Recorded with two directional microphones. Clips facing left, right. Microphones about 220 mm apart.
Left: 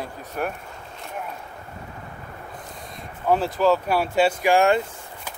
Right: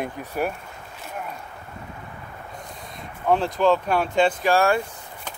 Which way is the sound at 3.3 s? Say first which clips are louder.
Even; 5° left (ahead or behind).